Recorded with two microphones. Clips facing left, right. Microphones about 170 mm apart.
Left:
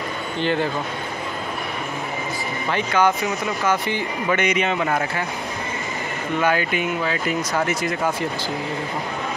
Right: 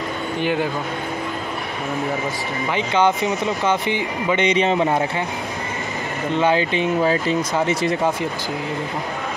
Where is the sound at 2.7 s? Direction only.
20° right (ahead or behind).